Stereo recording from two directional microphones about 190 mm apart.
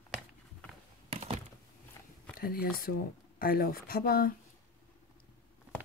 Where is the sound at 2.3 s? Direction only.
50° left (ahead or behind).